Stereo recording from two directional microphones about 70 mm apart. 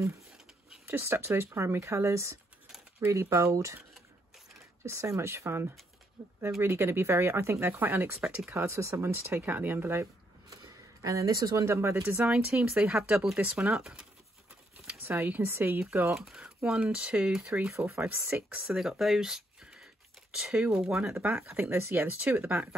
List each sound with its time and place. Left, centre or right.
0.8 s speech: right
4.8 s speech: right
8.5 s speech: right
11.0 s speech: right
11.5 s speech: right
12.2 s speech: centre
15.0 s speech: right
16.2 s speech: centre
18.0 s speech: right
18.7 s speech: centre
21.5 s speech: right
21.7 s speech: right